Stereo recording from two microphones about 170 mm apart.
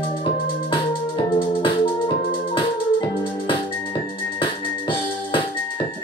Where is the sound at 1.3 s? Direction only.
30° left (ahead or behind).